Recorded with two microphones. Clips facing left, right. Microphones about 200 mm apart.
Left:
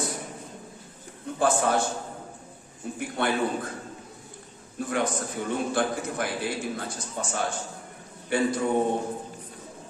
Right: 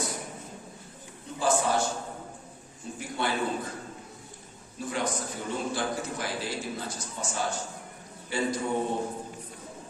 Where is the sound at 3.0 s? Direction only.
55° left (ahead or behind).